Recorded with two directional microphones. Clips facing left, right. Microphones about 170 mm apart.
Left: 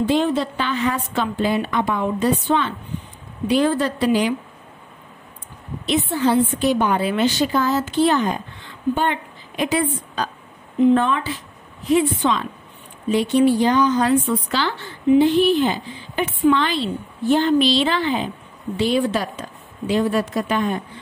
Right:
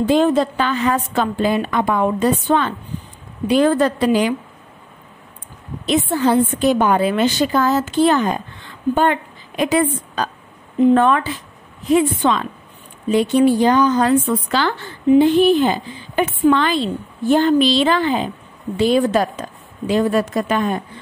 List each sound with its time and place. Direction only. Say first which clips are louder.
0.0 s a woman's voice: right 4 dB; 45° right (ahead or behind)
5.9 s a woman's voice: right 3 dB; 45° right (ahead or behind)